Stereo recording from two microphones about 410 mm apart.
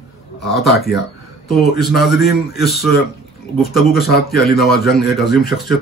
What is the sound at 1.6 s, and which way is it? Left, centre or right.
Speech, left.